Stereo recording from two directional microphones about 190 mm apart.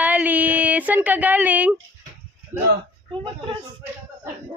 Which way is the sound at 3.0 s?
25° right (ahead or behind).